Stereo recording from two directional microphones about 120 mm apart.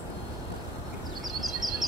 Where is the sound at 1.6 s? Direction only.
30° left (ahead or behind).